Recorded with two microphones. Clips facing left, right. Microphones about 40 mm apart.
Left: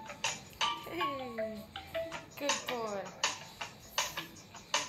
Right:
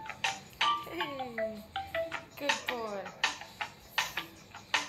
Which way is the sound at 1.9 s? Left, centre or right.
Right.